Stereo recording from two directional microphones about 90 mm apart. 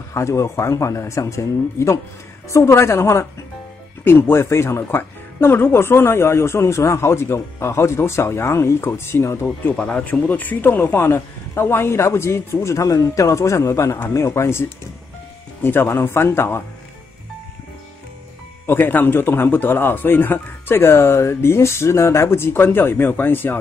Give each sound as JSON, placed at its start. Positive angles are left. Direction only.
{"t": 0.1, "sound": "speech", "side_deg": 35}
{"t": 9.8, "sound": "speech", "side_deg": 15}
{"t": 18.7, "sound": "speech", "side_deg": 25}